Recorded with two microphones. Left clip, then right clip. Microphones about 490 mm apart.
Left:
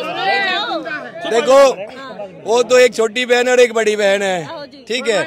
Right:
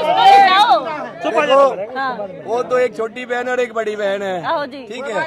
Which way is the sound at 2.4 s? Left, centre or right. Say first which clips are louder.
Left 6 dB; left.